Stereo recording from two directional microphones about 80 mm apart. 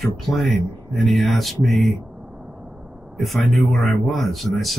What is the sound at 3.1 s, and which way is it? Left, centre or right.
Speech, centre.